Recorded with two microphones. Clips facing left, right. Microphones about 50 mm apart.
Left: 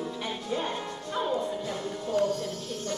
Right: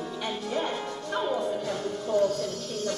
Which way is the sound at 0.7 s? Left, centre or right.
Right.